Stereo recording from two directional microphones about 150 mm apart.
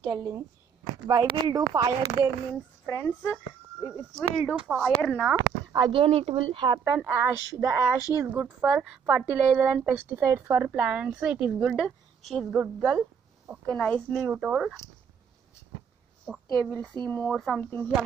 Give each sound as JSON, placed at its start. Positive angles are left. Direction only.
{"t": 0.1, "sound": "speech", "side_deg": -20}
{"t": 2.9, "sound": "speech", "side_deg": 15}
{"t": 3.8, "sound": "speech", "side_deg": -5}
{"t": 5.3, "sound": "speech", "side_deg": -25}
{"t": 6.8, "sound": "a woman's voice", "side_deg": -15}
{"t": 13.7, "sound": "speech", "side_deg": 5}
{"t": 14.3, "sound": "speech", "side_deg": -5}
{"t": 16.3, "sound": "a woman's voice", "side_deg": 10}